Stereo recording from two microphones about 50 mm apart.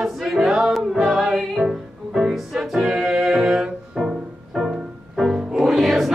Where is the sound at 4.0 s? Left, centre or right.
Centre.